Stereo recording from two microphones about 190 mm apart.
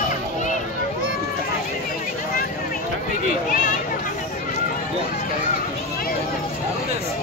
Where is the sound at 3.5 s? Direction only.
45° left (ahead or behind).